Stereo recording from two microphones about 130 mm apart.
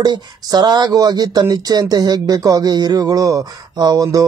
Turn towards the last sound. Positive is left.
turn(degrees=-30)  # may be behind; listen again after turning